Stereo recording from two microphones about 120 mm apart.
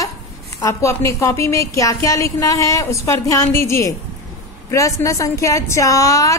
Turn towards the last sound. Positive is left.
turn(degrees=25)  # may be behind; listen again after turning